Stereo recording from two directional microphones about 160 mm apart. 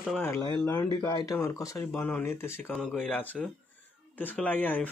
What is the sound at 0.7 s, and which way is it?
Speech, 25° left (ahead or behind).